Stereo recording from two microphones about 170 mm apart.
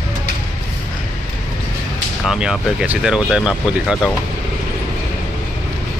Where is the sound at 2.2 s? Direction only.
Centre (ahead or behind).